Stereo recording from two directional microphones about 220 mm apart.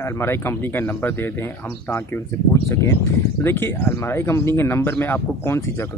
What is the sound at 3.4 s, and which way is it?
Speech, 10° left (ahead or behind).